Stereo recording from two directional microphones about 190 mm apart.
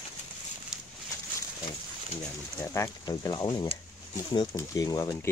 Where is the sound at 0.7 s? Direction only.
5° right (ahead or behind).